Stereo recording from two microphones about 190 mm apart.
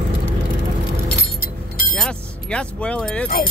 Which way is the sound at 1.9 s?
5° left (ahead or behind).